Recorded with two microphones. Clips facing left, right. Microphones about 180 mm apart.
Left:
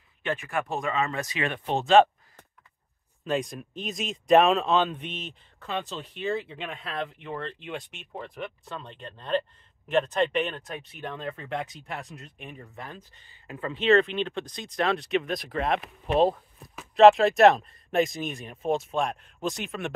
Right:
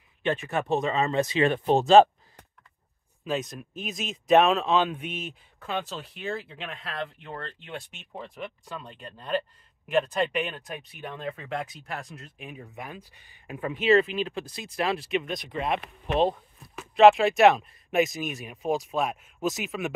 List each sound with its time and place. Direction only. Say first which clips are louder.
0.5 s speech: right 4 dB; 20° right (ahead or behind)
3.3 s speech: left 2 dB; centre (ahead or behind)